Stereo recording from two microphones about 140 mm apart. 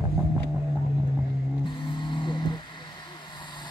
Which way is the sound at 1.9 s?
35° left (ahead or behind).